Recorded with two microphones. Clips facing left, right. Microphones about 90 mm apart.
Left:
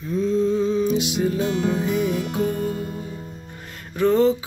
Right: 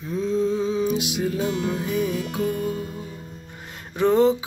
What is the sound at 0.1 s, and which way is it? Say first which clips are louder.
Music: left 2 dB; 5° right (ahead or behind).